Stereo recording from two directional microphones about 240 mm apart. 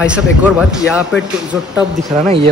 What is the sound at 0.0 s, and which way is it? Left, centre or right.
Speech, centre.